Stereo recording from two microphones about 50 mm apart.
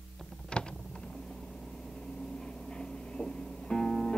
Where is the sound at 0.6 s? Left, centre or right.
Left.